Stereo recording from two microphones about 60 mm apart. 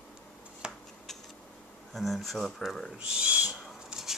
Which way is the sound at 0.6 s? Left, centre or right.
Centre.